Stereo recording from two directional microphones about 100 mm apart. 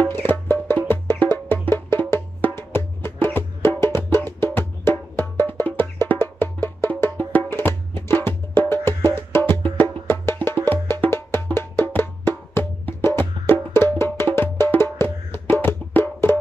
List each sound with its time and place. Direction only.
0.0 s music: 20° left (ahead or behind)